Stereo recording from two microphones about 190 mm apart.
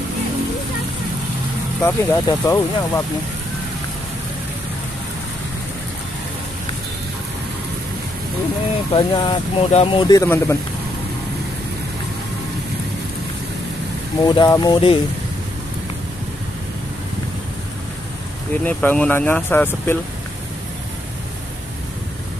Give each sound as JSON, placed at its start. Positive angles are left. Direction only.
{"t": 1.8, "sound": "speech", "side_deg": 10}
{"t": 8.9, "sound": "speech", "side_deg": 25}
{"t": 10.0, "sound": "speech", "side_deg": 15}
{"t": 14.2, "sound": "speech", "side_deg": 20}
{"t": 18.7, "sound": "speech", "side_deg": 10}